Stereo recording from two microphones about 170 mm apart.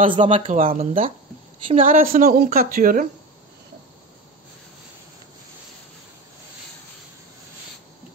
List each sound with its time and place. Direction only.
0.0 s speech: 30° right (ahead or behind)
1.8 s a woman's voice: 55° right (ahead or behind)